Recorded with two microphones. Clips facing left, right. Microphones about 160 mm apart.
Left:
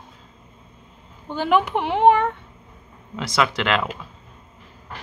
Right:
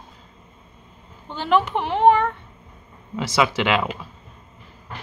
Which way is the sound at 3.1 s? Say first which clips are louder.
Right 1 dB; 5° right (ahead or behind).